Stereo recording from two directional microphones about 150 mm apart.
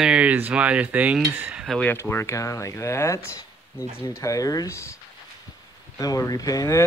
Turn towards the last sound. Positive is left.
turn(degrees=20)  # may be behind; listen again after turning